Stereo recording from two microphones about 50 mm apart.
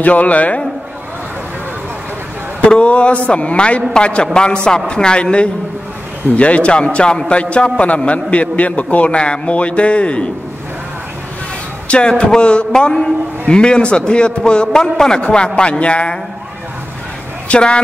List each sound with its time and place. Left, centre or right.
0.0 s a man's voice: left
2.6 s a man's voice: left
11.9 s a man's voice: centre
17.5 s speech: centre